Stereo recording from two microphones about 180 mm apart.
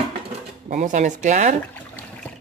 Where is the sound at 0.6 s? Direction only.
45° right (ahead or behind).